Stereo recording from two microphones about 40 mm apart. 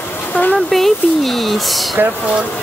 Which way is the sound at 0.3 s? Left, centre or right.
Left.